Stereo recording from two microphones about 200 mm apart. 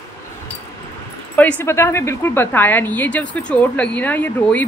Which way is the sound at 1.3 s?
10° left (ahead or behind).